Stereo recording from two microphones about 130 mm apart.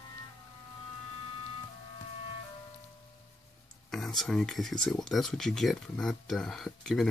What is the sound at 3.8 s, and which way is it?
Speech, centre (ahead or behind).